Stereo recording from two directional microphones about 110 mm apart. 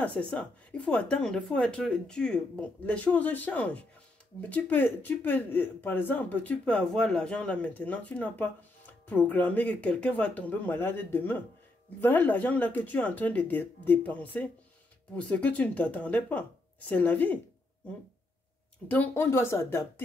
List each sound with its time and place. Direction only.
0.0 s speech: 10° left (ahead or behind)
18.9 s speech: 15° left (ahead or behind)